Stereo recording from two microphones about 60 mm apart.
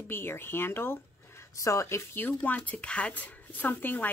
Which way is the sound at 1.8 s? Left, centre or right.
Left.